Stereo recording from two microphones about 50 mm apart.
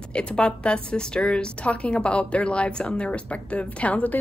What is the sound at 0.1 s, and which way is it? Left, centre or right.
A woman's voice, left.